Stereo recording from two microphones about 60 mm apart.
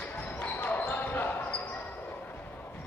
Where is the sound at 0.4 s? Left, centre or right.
Left.